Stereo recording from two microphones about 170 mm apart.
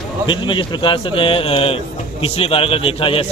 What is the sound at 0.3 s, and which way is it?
A man's voice, 30° left (ahead or behind).